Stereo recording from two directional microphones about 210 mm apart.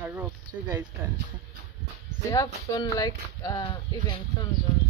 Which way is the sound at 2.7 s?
15° left (ahead or behind).